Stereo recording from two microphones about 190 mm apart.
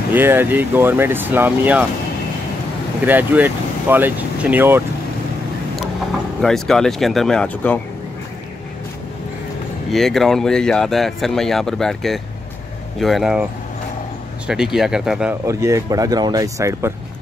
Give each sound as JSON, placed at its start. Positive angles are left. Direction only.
{"t": 0.1, "sound": "speech", "side_deg": -10}
{"t": 3.1, "sound": "speech", "side_deg": -10}
{"t": 6.4, "sound": "speech", "side_deg": 0}
{"t": 9.8, "sound": "speech", "side_deg": 0}
{"t": 14.5, "sound": "speech", "side_deg": -5}
{"t": 15.4, "sound": "speech", "side_deg": -15}